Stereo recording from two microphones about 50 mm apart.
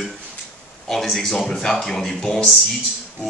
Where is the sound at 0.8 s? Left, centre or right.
Centre.